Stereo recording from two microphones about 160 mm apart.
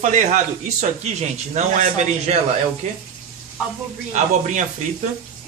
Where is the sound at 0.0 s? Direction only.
50° right (ahead or behind).